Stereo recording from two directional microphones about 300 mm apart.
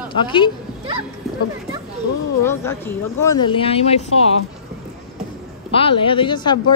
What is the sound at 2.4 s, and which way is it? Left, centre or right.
Speech, centre.